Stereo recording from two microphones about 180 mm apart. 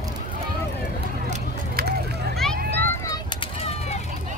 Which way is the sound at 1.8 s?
65° right (ahead or behind).